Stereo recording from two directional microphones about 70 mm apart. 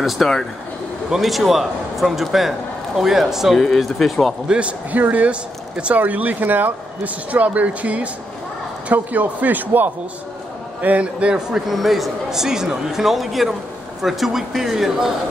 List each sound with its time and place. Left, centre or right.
0.0 s speech: centre
4.5 s a man's voice: centre